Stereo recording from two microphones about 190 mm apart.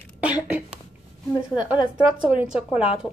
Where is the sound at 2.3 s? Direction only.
5° right (ahead or behind).